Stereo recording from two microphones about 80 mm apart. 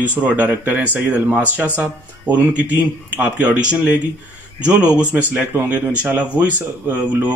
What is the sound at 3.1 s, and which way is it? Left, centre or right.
A man's voice, centre.